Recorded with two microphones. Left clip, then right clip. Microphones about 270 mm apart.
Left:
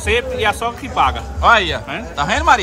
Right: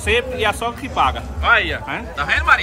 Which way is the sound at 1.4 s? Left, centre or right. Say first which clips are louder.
Left 3 dB; centre.